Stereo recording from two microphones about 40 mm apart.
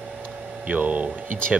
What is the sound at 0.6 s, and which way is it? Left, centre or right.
Speech, right.